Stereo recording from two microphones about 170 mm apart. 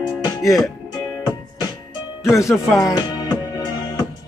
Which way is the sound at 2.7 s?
20° left (ahead or behind).